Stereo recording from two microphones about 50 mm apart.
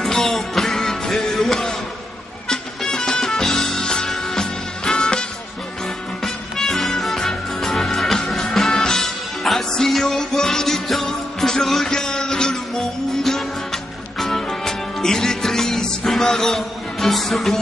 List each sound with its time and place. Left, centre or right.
0.0 s music: centre
6.2 s music: centre